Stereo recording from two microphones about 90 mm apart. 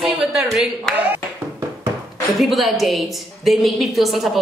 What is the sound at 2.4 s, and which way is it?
A woman's voice, centre (ahead or behind).